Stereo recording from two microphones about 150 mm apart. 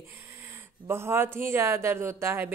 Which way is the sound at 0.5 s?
15° right (ahead or behind).